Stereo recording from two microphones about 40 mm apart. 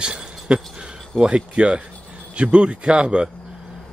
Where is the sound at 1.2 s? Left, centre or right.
Right.